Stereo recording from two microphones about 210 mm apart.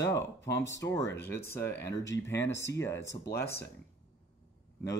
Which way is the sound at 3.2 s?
50° left (ahead or behind).